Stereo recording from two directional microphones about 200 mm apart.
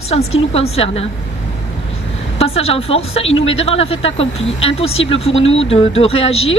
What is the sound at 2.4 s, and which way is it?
Speech, 30° left (ahead or behind).